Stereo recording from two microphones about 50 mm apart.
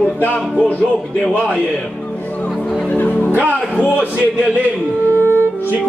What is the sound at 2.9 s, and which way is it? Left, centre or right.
Music, left.